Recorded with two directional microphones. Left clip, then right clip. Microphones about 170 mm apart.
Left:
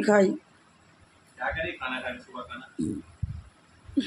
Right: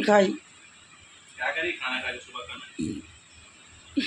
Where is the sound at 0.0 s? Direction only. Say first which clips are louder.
Right 1 dB; 20° left (ahead or behind).